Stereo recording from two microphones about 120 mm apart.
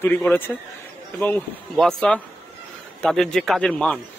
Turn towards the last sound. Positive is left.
turn(degrees=5)  # may be behind; listen again after turning